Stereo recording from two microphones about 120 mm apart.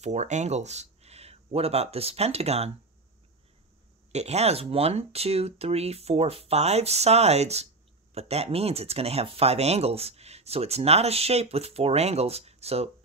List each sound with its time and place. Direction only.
0.0 s speech: 75° right (ahead or behind)
4.1 s speech: 65° right (ahead or behind)